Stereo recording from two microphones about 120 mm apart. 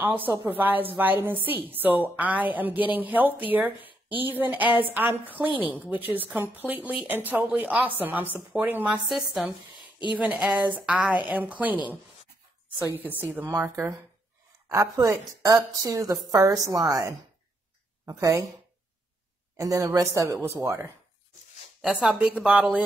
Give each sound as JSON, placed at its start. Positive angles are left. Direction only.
{"t": 0.0, "sound": "a woman's voice", "side_deg": -15}
{"t": 9.1, "sound": "a woman's voice", "side_deg": 0}
{"t": 13.0, "sound": "a woman's voice", "side_deg": -15}
{"t": 14.7, "sound": "a woman's voice", "side_deg": -30}
{"t": 19.5, "sound": "a woman's voice", "side_deg": -30}
{"t": 22.0, "sound": "a woman's voice", "side_deg": -10}